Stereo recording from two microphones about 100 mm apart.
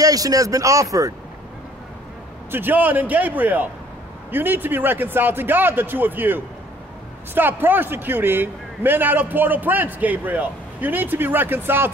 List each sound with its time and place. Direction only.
0.0 s speech: 35° right (ahead or behind)
2.5 s a man's voice: 20° right (ahead or behind)